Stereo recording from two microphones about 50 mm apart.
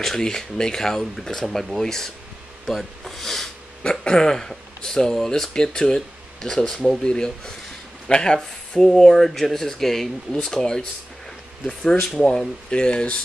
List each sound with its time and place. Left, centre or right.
0.0 s speech: centre